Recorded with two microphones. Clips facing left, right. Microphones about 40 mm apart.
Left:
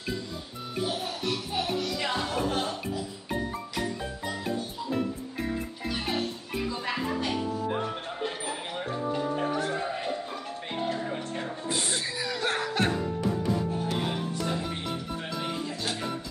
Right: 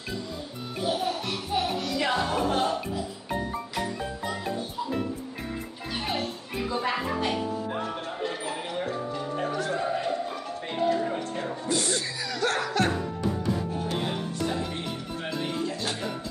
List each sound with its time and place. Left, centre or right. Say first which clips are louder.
0.8 s music: right 4 dB; centre
6.8 s music: right 5 dB; centre
8.8 s music: left 1 dB; centre
11.6 s music: right 3 dB; centre
14.4 s music: right 1 dB; centre